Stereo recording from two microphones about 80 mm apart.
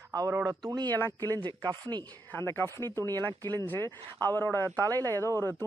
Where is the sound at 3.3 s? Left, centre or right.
Right.